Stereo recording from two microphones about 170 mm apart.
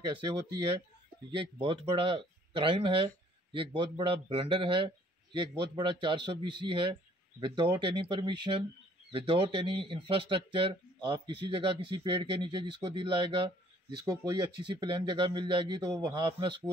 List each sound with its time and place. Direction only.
0.1 s speech: 30° right (ahead or behind)